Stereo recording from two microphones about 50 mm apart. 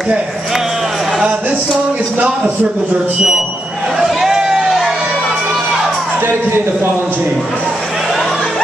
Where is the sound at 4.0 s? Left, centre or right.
Centre.